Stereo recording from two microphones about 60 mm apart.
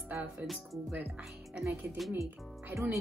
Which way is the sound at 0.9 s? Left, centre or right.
Right.